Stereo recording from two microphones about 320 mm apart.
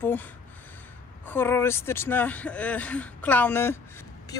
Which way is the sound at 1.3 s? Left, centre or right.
Centre.